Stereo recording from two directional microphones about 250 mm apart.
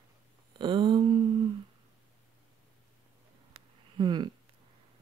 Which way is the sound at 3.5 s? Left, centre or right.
Centre.